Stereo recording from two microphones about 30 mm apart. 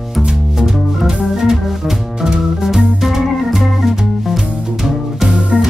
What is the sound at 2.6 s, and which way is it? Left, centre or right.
Music, centre.